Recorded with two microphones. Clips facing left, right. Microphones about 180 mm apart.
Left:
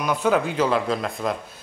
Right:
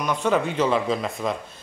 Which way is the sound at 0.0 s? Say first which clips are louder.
Left 1 dB; 5° left (ahead or behind).